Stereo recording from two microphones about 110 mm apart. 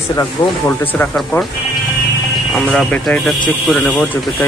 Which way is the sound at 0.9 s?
10° left (ahead or behind).